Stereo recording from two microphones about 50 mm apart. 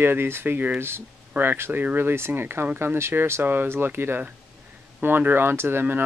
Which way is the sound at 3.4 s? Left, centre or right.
Right.